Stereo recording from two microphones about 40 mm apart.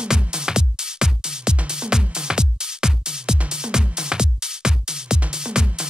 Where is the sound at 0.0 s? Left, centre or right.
Right.